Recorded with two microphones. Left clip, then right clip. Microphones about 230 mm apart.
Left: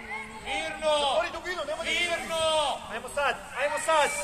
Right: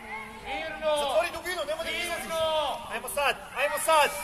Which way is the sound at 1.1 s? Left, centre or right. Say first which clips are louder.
Right 1 dB; right.